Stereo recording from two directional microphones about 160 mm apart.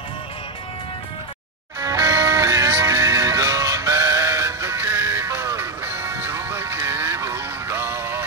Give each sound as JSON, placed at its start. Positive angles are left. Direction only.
{"t": 1.8, "sound": "music", "side_deg": -20}